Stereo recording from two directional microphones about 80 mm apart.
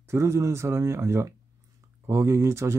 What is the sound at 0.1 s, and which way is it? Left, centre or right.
Speech, right.